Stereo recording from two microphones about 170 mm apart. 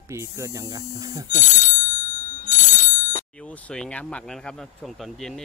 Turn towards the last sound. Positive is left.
turn(degrees=0)  # may be behind; listen again after turning